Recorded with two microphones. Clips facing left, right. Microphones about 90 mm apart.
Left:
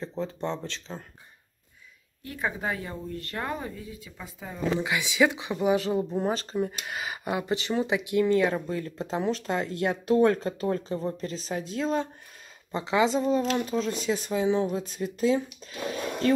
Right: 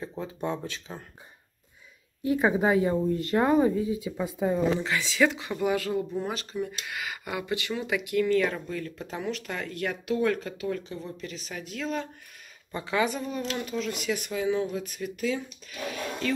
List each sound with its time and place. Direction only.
0.2 s speech: 10° right (ahead or behind)
2.2 s speech: 10° right (ahead or behind)
4.8 s speech: 15° left (ahead or behind); by 16.3 s 35° left (ahead or behind)